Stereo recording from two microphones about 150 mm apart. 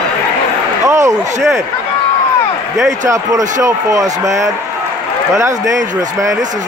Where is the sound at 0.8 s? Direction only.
20° right (ahead or behind).